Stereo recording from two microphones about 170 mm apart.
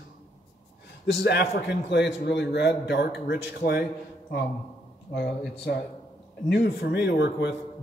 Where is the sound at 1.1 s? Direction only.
80° left.